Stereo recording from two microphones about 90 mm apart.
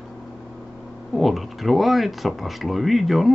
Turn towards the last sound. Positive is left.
turn(degrees=0)  # may be behind; listen again after turning